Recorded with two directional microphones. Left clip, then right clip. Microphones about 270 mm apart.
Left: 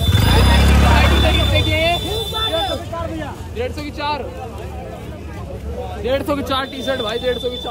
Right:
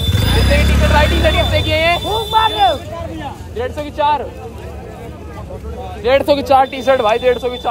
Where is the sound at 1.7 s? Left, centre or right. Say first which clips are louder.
Right 5 dB; right.